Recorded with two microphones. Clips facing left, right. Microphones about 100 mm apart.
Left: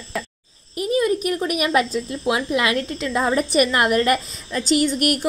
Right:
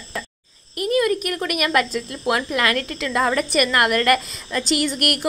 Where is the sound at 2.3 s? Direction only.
50° right (ahead or behind).